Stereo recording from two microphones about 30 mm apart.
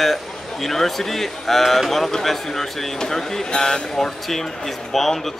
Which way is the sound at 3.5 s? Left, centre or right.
Left.